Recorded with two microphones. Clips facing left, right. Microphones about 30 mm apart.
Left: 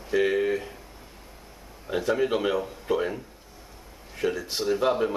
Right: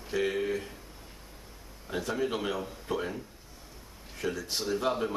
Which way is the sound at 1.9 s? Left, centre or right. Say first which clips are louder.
Left 7 dB; centre.